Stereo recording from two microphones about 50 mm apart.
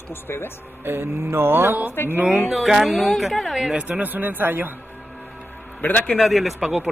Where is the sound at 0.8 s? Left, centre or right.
Right.